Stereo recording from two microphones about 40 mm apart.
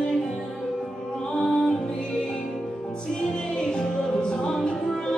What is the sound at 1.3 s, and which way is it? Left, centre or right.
Music, left.